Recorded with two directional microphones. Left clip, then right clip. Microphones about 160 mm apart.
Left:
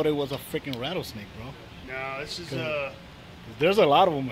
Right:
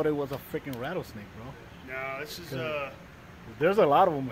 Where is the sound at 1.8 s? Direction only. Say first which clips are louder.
Left 2 dB; 30° left (ahead or behind).